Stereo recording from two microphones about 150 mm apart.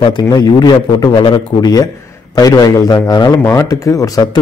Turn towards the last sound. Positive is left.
turn(degrees=25)  # may be behind; listen again after turning